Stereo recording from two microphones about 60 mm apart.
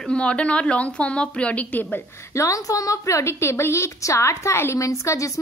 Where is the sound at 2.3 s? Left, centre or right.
Left.